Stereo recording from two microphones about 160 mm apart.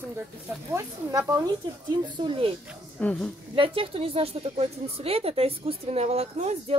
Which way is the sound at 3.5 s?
35° right (ahead or behind).